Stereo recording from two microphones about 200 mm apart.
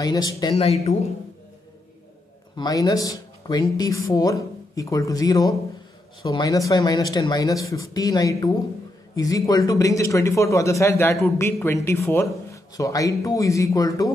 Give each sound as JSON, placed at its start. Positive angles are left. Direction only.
{"t": 0.0, "sound": "speech", "side_deg": 20}
{"t": 2.5, "sound": "speech", "side_deg": 20}